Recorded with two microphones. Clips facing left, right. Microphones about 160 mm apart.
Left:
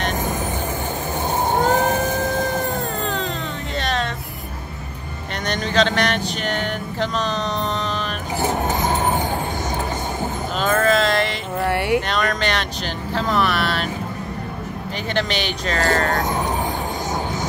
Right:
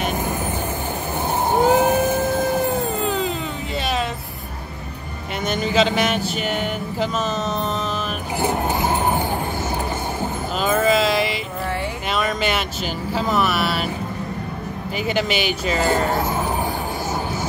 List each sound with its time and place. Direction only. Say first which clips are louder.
1.6 s a sound: right 4 dB; 10° right (ahead or behind)
2.7 s cat: right 3 dB; 5° right (ahead or behind)
5.5 s speech: right 1 dB; 5° right (ahead or behind)
8.6 s vehicle: even; 20° left (ahead or behind)
10.6 s music: even; 5° right (ahead or behind)
11.6 s a sound: left 9 dB; 70° left (ahead or behind)
12.1 s speech: even; 5° right (ahead or behind)
13.1 s vehicle: even; 5° right (ahead or behind)
15.1 s speech: even; 5° right (ahead or behind)